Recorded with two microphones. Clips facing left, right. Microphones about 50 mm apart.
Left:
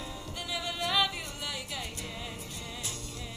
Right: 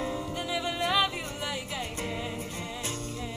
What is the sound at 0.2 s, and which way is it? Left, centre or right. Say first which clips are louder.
Music: right 5 dB; centre.